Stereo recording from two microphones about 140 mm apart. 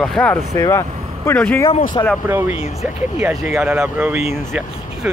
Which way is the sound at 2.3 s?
15° right (ahead or behind).